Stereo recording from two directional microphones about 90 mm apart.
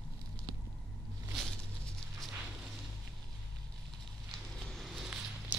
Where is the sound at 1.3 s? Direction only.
5° left (ahead or behind).